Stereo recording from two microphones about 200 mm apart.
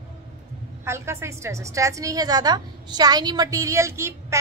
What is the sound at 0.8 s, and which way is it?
A woman's voice, 15° right (ahead or behind).